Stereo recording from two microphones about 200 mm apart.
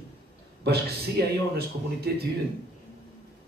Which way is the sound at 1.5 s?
50° right (ahead or behind).